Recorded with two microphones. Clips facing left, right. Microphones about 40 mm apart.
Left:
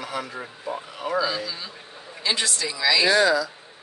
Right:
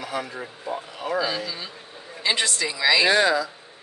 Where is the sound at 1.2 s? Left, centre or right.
Centre.